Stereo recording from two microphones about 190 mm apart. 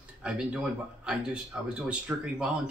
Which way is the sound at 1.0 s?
5° right (ahead or behind).